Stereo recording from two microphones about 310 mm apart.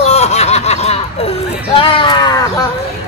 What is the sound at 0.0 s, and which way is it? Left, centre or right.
Snicker, left.